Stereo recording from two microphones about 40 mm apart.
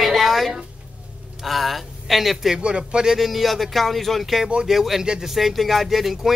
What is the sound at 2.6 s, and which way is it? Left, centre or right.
Speech, right.